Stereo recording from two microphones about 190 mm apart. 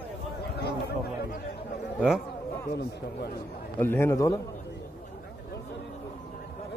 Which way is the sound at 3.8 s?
10° left (ahead or behind).